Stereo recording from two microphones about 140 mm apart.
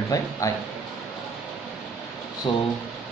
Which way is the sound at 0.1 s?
25° left (ahead or behind).